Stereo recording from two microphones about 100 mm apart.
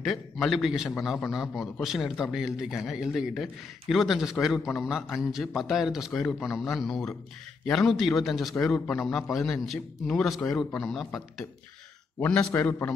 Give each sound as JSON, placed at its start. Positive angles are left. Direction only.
{"t": 0.0, "sound": "a man's voice", "side_deg": 0}
{"t": 12.2, "sound": "a man's voice", "side_deg": 15}